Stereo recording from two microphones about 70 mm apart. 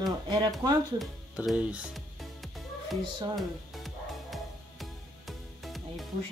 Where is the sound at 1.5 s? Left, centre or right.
Centre.